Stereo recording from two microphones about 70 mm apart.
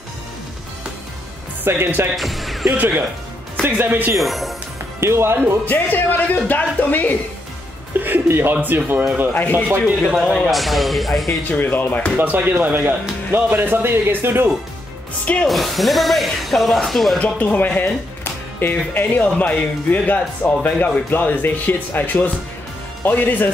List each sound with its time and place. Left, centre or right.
1.6 s speech: right
2.1 s music: centre
3.6 s speech: right
4.2 s speech: centre
5.0 s speech: right
5.7 s speech: left
8.0 s speech: right
9.3 s speech: left
10.4 s speech: centre
11.6 s speech: left
12.2 s speech: right
13.3 s speech: right
15.4 s speech: centre
17.2 s speech: left